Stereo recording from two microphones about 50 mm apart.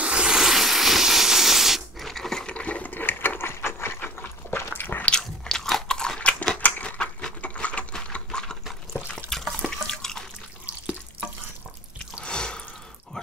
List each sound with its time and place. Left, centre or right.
0.0 s a sound: centre
2.0 s coin: centre
2.5 s ratchet: left
4.0 s dog: left
4.6 s a sound: left
5.0 s biting: centre
6.2 s a sound: centre
6.6 s crushing: left
7.4 s sewing machine: left
9.3 s water: centre
9.7 s drip: centre
12.3 s drip: centre